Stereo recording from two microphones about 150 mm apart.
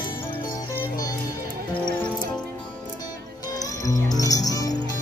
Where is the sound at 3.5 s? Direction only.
25° left (ahead or behind).